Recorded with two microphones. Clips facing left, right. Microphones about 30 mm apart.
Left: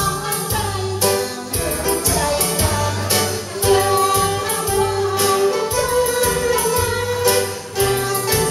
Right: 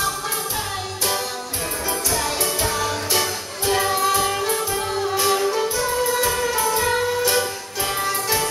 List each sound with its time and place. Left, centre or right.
1.9 s music: centre
6.1 s music: centre